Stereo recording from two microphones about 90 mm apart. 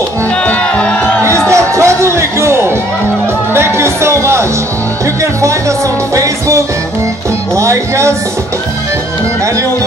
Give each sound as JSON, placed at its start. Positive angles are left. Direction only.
{"t": 0.5, "sound": "music", "side_deg": 15}
{"t": 1.5, "sound": "music", "side_deg": -30}